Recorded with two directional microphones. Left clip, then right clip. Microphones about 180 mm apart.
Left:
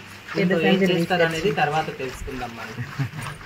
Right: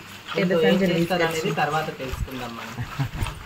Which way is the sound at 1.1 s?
45° left (ahead or behind).